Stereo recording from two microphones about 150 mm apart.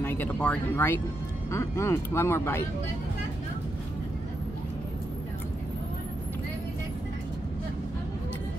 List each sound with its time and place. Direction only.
0.0 s speech: 15° left (ahead or behind)